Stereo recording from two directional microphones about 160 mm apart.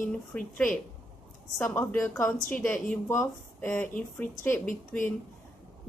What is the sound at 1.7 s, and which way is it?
A woman's voice, 15° left (ahead or behind).